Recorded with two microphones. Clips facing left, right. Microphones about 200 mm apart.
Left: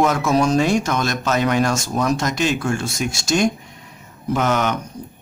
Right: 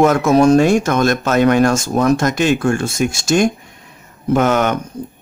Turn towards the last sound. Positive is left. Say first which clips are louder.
# right 5 dB
turn(degrees=-55)  # may be behind; listen again after turning